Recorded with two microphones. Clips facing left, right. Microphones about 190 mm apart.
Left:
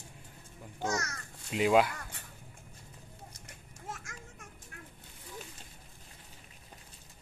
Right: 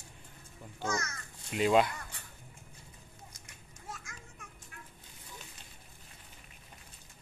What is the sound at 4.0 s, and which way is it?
Children playing, 45° left (ahead or behind).